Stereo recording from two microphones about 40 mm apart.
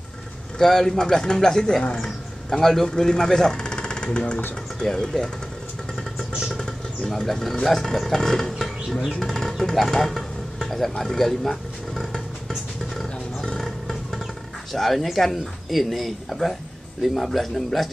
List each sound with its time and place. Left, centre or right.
0.6 s speech: centre
7.1 s speech: centre
9.0 s vehicle: centre
14.7 s speech: centre